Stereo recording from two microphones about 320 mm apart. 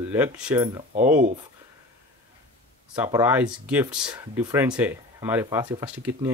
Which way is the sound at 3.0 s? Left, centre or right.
Centre.